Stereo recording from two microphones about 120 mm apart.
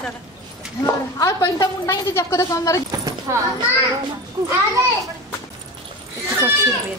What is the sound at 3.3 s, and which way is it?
Speech, 25° right (ahead or behind).